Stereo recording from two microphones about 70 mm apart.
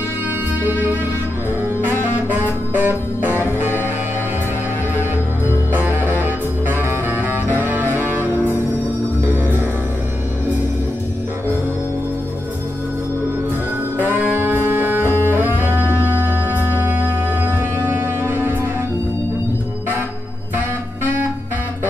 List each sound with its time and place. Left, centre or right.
1.8 s music: right
5.7 s music: right
13.9 s music: right